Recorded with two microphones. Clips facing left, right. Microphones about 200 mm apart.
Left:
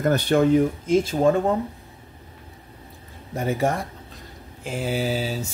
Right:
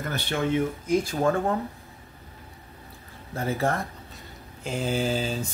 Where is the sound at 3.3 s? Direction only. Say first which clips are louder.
Left 3 dB; 15° left (ahead or behind).